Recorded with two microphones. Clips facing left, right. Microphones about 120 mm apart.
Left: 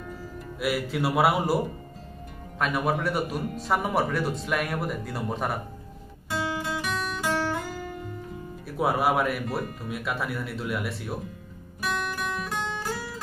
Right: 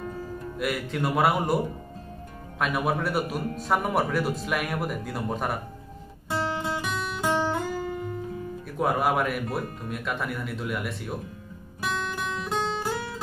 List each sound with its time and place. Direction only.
0.6 s speech: 5° left (ahead or behind)
2.6 s speech: centre (ahead or behind)
6.8 s music: 20° right (ahead or behind)
8.6 s speech: 5° left (ahead or behind)
11.8 s music: 20° right (ahead or behind)